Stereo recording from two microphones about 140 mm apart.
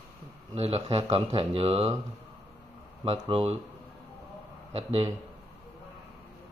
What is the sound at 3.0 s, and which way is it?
Speech, 45° right (ahead or behind).